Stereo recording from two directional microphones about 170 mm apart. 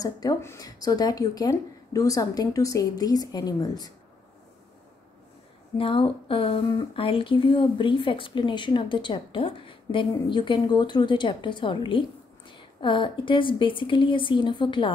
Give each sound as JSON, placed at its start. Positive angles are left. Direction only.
{"t": 0.0, "sound": "speech", "side_deg": 20}
{"t": 5.8, "sound": "speech", "side_deg": 30}